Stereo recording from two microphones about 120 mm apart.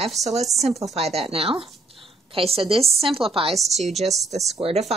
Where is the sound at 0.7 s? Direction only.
Centre (ahead or behind).